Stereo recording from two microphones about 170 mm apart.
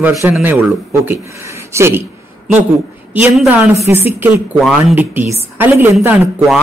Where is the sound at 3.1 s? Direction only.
10° right (ahead or behind).